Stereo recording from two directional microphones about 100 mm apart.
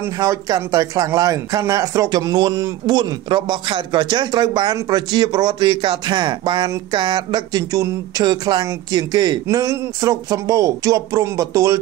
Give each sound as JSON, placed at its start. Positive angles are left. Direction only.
{"t": 0.2, "sound": "speech", "side_deg": -35}